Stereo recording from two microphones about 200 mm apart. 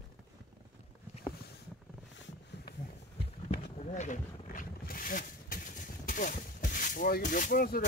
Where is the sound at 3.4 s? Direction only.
35° left (ahead or behind).